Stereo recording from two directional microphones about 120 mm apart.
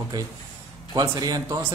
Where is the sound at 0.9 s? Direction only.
35° right (ahead or behind).